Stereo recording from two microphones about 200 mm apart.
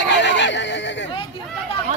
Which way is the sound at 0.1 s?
60° left (ahead or behind).